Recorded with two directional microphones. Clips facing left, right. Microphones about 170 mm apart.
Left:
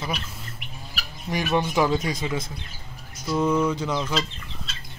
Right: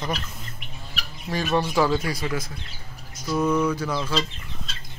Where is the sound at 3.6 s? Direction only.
20° left (ahead or behind).